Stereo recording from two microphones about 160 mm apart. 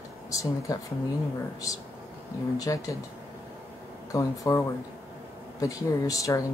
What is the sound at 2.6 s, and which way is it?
Speech, 20° left (ahead or behind).